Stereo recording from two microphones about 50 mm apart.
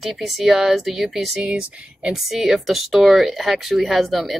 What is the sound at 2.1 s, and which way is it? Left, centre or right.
Speech, centre.